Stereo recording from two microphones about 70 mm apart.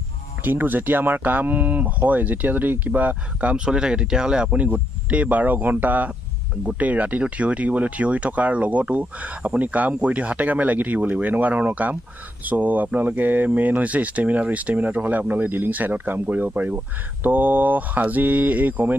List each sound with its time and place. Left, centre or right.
0.4 s speech: right